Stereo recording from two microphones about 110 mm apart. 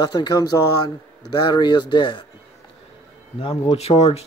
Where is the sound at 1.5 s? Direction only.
40° left (ahead or behind).